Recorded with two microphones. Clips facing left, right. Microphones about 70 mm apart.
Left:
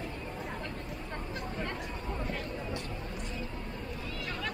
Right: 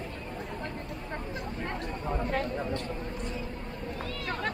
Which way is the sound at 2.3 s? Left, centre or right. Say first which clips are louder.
Right 6 dB; right.